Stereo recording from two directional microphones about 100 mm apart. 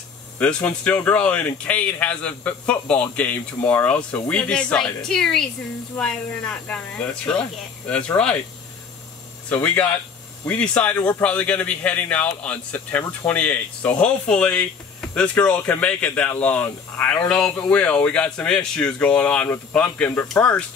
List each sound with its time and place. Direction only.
0.4 s a man's voice: 15° left (ahead or behind)
9.5 s a man's voice: 15° left (ahead or behind)